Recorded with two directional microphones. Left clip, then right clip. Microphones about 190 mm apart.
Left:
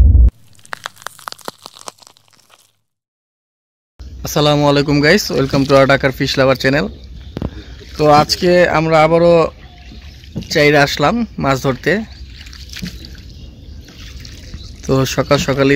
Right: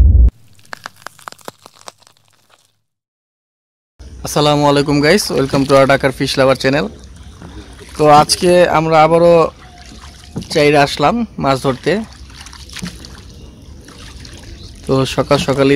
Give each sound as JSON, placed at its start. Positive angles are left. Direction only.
{"t": 0.3, "sound": "crunch", "side_deg": 0}
{"t": 4.2, "sound": "speech", "side_deg": 0}
{"t": 8.0, "sound": "speech", "side_deg": -5}
{"t": 9.8, "sound": "boat", "side_deg": -30}
{"t": 10.5, "sound": "speech", "side_deg": 0}
{"t": 12.3, "sound": "trickle", "side_deg": -30}
{"t": 14.9, "sound": "speech", "side_deg": 0}